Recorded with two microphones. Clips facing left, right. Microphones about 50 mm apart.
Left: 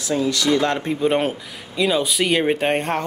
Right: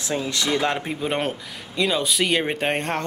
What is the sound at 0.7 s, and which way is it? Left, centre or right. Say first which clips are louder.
Speech: left 6 dB; centre.